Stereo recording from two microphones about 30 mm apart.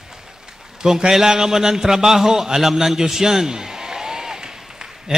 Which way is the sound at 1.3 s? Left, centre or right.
Centre.